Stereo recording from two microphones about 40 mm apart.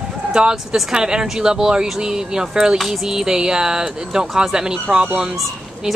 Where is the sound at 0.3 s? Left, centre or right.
Right.